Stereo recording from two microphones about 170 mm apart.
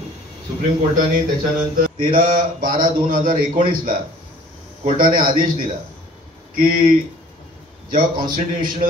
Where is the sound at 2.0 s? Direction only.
50° right (ahead or behind).